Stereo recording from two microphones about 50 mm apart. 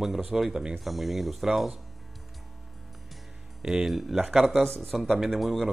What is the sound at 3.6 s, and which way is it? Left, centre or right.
Speech, centre.